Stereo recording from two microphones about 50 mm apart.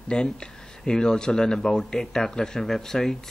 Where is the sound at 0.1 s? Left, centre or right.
Centre.